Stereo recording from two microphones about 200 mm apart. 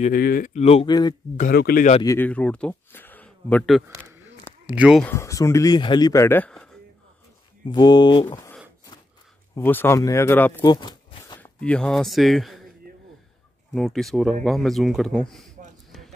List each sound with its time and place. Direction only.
0.0 s speech: 45° left (ahead or behind); by 0.9 s 30° left (ahead or behind)
1.3 s speech: 45° left (ahead or behind)
2.0 s speech: 10° left (ahead or behind)
5.0 s speech: 15° left (ahead or behind)
7.6 s speech: 20° left (ahead or behind)
9.6 s speech: 10° left (ahead or behind)
10.6 s a sound: 20° left (ahead or behind)
11.3 s speech: 10° left (ahead or behind)
13.7 s speech: centre (ahead or behind)